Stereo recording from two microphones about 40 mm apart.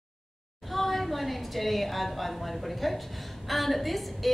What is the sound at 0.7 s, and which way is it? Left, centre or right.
A woman's voice, centre.